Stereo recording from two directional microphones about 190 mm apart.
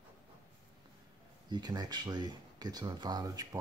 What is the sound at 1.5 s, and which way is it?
Speech, 20° right (ahead or behind).